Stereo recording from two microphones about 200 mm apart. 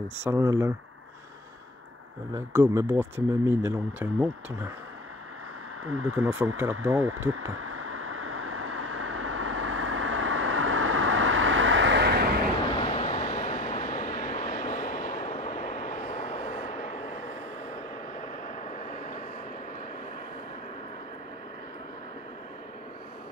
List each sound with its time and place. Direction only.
0.2 s speech: 15° right (ahead or behind)
2.3 s speech: 15° right (ahead or behind)
6.0 s speech: 10° right (ahead or behind)
7.6 s vehicle: 90° right; by 12.3 s 55° right (ahead or behind)
12.7 s vehicle: 35° left (ahead or behind)